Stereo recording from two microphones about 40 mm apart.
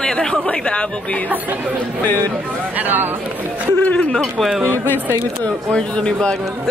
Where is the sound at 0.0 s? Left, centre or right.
Centre.